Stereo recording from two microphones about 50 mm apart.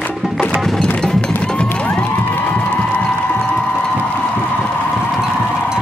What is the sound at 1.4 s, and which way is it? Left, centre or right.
Music, left.